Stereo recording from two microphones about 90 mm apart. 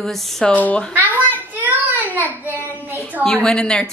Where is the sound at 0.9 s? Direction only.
20° right (ahead or behind).